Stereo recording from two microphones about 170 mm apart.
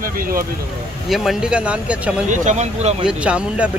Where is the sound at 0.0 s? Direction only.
55° right (ahead or behind).